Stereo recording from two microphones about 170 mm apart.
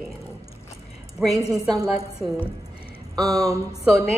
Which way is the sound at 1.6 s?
20° right (ahead or behind).